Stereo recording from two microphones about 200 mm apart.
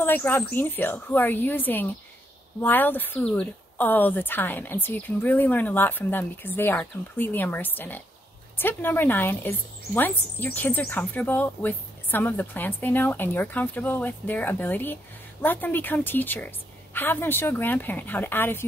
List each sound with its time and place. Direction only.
0.0 s a woman's voice: 10° left (ahead or behind)